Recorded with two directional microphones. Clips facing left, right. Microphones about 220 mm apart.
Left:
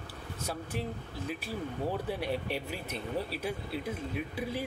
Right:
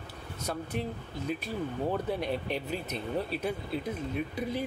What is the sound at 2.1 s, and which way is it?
Speech, 10° left (ahead or behind).